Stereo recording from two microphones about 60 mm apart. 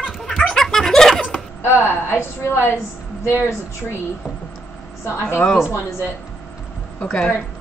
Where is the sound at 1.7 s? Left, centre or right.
Left.